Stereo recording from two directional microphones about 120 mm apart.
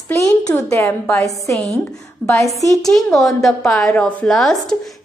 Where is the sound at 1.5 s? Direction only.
5° left (ahead or behind).